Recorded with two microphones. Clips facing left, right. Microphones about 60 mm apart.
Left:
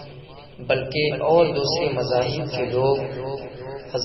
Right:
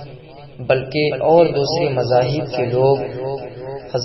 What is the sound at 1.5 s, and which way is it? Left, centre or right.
A man's voice, right.